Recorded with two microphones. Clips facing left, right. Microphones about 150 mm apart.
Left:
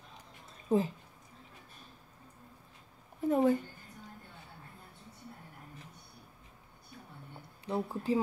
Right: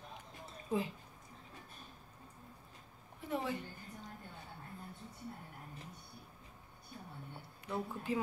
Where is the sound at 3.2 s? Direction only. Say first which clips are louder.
Left 11 dB; 45° left (ahead or behind).